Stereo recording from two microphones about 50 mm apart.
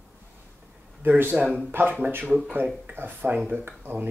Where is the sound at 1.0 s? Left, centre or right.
Right.